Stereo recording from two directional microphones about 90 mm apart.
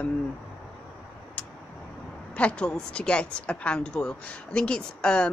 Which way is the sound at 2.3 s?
15° left (ahead or behind).